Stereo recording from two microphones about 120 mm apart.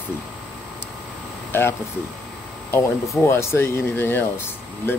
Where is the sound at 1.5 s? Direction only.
20° left (ahead or behind).